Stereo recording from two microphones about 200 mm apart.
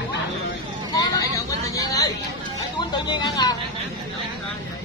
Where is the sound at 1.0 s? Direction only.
15° left (ahead or behind).